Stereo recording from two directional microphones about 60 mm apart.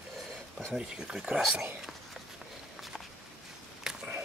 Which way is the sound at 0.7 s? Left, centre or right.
Centre.